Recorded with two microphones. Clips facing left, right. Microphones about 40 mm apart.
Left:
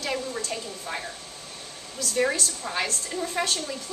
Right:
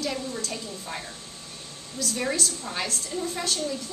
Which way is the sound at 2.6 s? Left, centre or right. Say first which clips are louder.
Left 2 dB; left.